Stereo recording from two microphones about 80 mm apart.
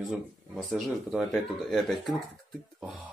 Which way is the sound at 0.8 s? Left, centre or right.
Centre.